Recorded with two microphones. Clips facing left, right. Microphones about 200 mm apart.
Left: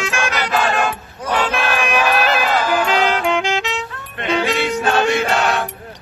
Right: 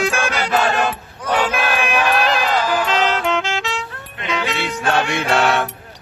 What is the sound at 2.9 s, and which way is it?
Music, 10° left (ahead or behind).